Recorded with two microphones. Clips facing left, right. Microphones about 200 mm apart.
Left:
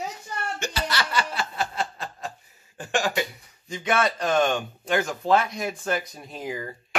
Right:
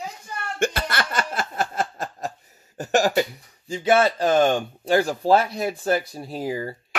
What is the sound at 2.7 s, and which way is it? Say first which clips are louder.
Speech: right 6 dB; 40° right (ahead or behind).